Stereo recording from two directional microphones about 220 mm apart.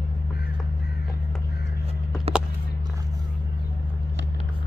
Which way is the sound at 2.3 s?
30° right (ahead or behind).